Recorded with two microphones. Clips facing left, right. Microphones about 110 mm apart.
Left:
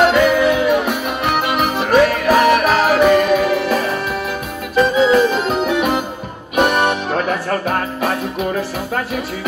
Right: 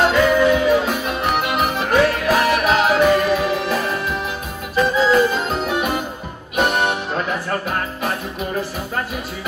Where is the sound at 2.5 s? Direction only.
55° left (ahead or behind).